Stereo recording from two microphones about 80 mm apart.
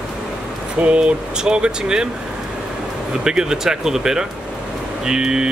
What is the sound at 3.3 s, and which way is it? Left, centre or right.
Speech, centre.